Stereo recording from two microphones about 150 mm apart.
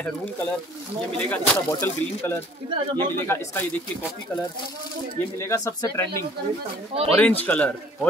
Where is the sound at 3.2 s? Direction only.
15° left (ahead or behind).